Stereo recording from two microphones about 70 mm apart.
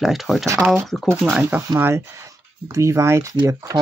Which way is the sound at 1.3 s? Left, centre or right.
Right.